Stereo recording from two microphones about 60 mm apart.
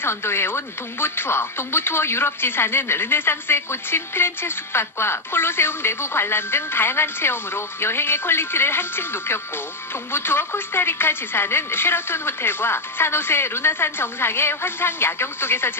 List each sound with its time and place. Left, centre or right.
0.0 s speech: left